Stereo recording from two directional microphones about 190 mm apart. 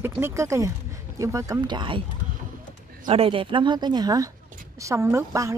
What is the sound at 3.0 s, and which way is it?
A woman's voice, 30° right (ahead or behind).